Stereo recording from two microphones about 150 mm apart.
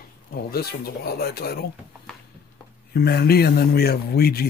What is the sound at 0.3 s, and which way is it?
Speech, 90° left.